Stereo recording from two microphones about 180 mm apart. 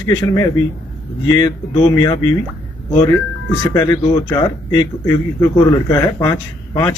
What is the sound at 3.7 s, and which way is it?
A man's voice, 20° left (ahead or behind).